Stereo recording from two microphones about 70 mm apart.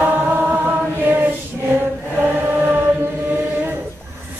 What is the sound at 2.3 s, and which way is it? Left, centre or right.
Chant, right.